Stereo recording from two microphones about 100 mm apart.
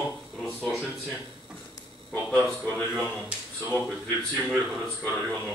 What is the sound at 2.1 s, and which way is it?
Speech, 15° left (ahead or behind).